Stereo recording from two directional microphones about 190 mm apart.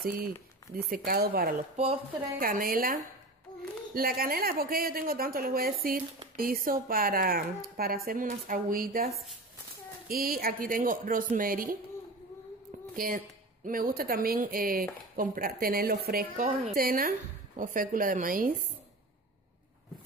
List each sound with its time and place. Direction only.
0.0 s speech: 50° right (ahead or behind)
12.9 s speech: 50° right (ahead or behind)